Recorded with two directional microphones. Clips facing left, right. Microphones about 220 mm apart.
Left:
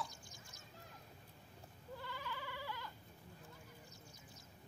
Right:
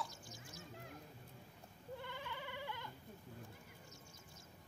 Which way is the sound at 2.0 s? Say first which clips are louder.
Left 2 dB; 20° right (ahead or behind).